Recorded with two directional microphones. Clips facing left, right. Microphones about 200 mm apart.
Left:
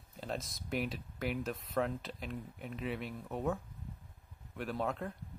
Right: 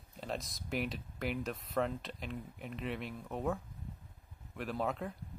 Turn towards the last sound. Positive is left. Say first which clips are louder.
# even
turn(degrees=0)  # may be behind; listen again after turning